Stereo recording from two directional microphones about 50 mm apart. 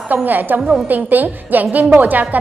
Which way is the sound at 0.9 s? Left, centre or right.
Right.